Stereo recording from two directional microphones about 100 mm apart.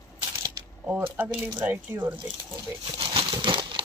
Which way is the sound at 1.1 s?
15° right (ahead or behind).